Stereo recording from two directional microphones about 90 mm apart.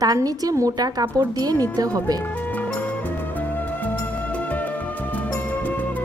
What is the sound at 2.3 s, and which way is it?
Music, 20° left (ahead or behind).